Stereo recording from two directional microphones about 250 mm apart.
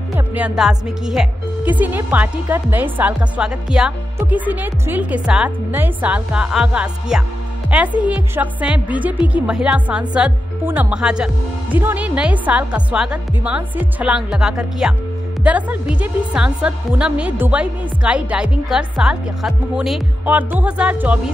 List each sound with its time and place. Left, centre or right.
0.3 s speech: centre